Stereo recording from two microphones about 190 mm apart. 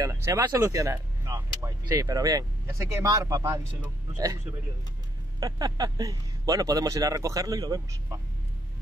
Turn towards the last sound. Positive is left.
turn(degrees=-20)  # may be behind; listen again after turning